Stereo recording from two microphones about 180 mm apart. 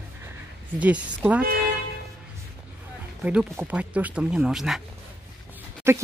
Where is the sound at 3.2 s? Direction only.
5° right (ahead or behind).